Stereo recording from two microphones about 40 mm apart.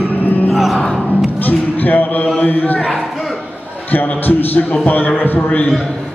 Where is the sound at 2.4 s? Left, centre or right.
Left.